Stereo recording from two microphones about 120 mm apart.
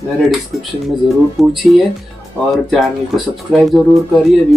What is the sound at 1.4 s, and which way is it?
Speech, centre (ahead or behind).